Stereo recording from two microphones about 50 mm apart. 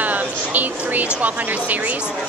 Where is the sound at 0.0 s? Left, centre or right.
Right.